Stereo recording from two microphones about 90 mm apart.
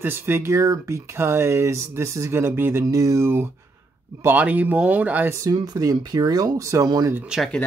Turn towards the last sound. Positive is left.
turn(degrees=-10)  # may be behind; listen again after turning